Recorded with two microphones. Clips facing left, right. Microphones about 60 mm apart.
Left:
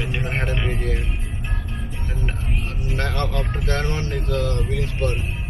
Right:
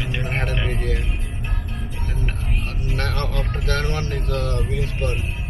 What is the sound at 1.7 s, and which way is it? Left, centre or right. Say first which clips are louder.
Music: even; centre.